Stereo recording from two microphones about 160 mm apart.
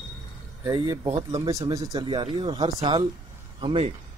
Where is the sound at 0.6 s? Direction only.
25° right (ahead or behind).